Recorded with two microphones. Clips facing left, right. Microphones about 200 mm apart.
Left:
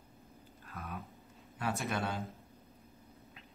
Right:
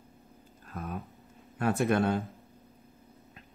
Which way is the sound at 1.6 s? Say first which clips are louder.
Right 9 dB; 50° right (ahead or behind).